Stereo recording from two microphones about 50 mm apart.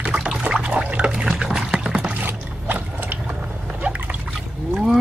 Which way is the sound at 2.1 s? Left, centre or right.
Right.